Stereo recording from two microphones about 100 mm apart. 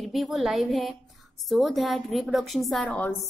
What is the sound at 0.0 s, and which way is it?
A woman's voice, centre (ahead or behind).